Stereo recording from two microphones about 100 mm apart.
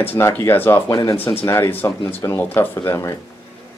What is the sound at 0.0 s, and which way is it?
Speech, 20° left (ahead or behind).